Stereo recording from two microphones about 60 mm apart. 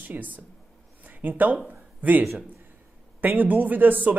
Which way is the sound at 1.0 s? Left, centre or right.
Right.